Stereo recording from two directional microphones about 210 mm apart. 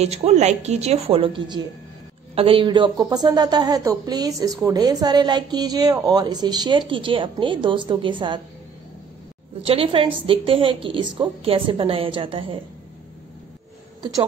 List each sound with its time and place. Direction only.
0.0 s a woman's voice: 30° right (ahead or behind)
9.7 s speech: 25° right (ahead or behind)